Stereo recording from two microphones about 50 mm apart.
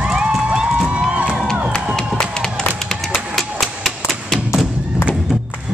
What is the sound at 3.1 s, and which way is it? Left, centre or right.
Music, centre.